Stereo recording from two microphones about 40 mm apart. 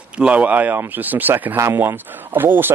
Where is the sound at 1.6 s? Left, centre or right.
Right.